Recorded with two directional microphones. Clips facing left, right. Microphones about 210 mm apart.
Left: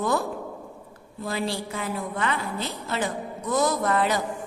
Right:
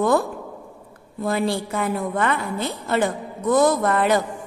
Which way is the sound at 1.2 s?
55° right (ahead or behind).